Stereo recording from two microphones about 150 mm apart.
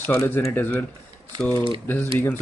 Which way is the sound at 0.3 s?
15° left (ahead or behind).